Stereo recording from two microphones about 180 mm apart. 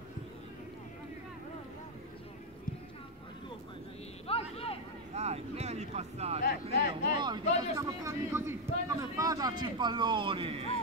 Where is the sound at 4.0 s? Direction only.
35° left (ahead or behind).